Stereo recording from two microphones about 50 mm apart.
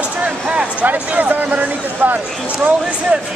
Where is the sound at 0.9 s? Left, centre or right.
Right.